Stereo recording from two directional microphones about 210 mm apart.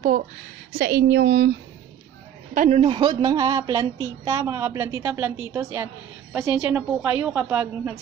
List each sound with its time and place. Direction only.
0.7 s a woman's voice: 55° right (ahead or behind)
2.5 s a woman's voice: 35° right (ahead or behind); by 8.0 s 10° right (ahead or behind)